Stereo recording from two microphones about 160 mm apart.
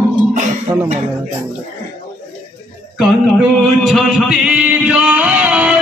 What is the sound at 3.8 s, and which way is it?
Music, centre (ahead or behind).